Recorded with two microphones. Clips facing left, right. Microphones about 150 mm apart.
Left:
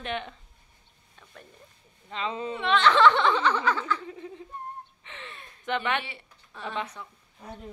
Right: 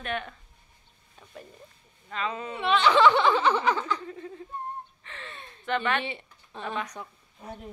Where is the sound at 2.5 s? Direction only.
5° right (ahead or behind).